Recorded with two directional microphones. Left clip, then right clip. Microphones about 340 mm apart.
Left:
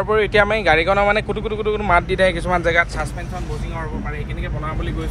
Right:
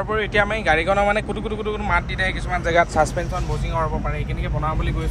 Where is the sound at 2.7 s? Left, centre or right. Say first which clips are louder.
Right 2 dB; centre.